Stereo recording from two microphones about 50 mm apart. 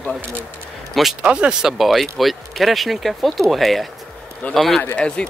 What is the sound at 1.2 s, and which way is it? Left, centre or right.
Speech, right.